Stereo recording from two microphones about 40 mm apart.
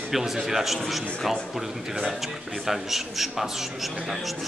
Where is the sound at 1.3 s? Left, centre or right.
Centre.